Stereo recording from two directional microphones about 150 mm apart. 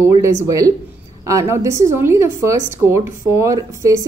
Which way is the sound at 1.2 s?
20° right (ahead or behind).